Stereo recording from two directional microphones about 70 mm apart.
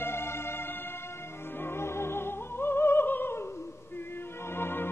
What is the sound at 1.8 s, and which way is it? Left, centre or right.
Opera, left.